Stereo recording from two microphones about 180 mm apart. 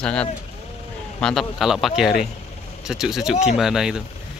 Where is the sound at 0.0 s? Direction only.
5° left (ahead or behind).